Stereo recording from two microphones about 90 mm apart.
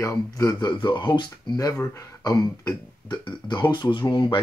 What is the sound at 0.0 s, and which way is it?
Speech, 35° left (ahead or behind).